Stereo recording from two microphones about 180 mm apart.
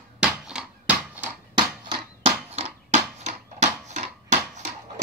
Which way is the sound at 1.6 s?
25° right (ahead or behind).